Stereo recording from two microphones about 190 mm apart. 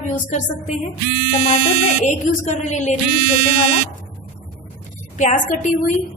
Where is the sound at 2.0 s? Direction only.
40° left (ahead or behind).